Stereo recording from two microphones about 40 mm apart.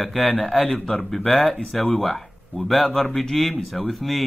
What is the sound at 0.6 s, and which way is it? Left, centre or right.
Speech, left.